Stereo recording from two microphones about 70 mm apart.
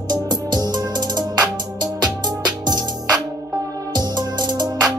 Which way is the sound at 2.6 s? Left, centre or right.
Right.